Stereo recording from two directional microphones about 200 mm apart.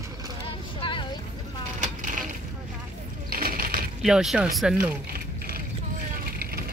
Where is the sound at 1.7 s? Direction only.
40° right (ahead or behind).